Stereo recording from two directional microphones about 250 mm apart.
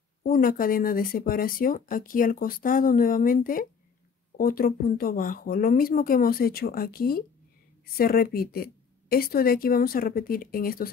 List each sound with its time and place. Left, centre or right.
0.2 s speech: left